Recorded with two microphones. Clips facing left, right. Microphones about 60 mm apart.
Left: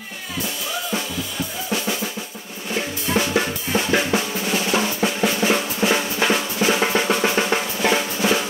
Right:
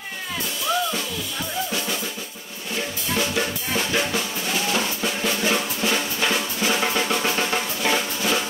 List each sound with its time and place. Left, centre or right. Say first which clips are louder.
2.7 s drum kit: left 4 dB; left
4.1 s drum: left 4 dB; centre